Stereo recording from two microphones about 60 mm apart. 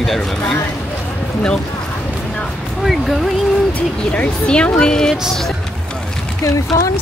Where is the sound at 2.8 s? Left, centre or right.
Centre.